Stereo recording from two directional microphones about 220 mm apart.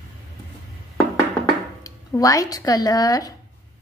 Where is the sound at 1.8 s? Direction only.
15° left (ahead or behind).